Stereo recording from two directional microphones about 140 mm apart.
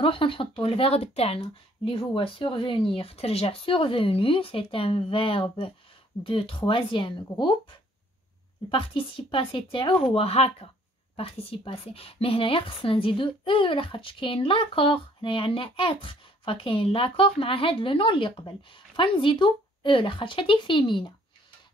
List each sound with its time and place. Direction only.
0.0 s a woman's voice: 40° left (ahead or behind)
8.6 s a woman's voice: 40° left (ahead or behind)